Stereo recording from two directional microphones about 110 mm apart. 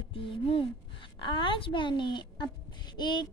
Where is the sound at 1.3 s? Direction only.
50° left (ahead or behind).